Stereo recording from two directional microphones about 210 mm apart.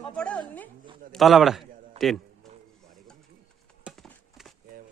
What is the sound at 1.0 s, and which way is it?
A man's voice, centre (ahead or behind).